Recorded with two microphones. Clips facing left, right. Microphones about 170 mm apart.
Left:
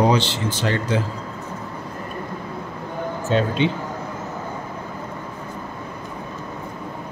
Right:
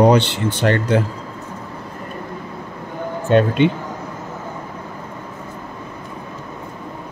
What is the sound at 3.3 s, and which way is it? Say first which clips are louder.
Speech: right 6 dB; 60° right (ahead or behind).